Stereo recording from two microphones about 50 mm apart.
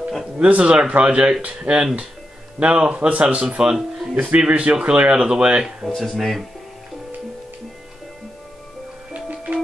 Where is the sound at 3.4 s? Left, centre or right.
Centre.